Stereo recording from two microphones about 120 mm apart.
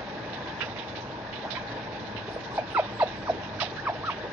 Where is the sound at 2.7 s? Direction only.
15° right (ahead or behind).